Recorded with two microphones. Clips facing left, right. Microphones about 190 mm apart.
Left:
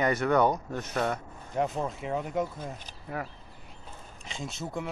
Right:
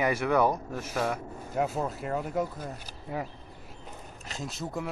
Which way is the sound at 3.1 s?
20° right (ahead or behind).